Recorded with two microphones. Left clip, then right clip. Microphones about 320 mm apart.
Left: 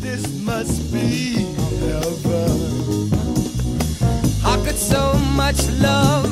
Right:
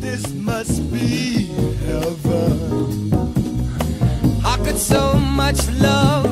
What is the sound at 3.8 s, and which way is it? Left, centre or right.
Music, centre.